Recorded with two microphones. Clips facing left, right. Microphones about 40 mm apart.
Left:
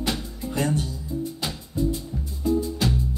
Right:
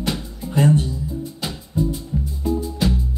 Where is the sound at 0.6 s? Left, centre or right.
Right.